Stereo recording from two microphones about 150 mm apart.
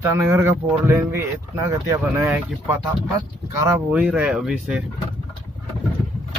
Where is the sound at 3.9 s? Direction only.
10° right (ahead or behind).